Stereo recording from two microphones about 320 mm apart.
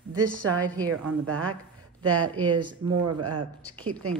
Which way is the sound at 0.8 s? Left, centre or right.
Right.